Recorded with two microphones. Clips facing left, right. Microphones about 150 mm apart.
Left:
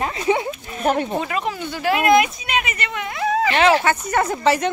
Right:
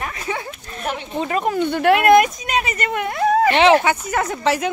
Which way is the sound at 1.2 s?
45° right (ahead or behind).